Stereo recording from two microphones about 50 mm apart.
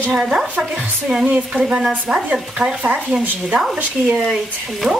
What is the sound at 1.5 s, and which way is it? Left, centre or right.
Speech, centre.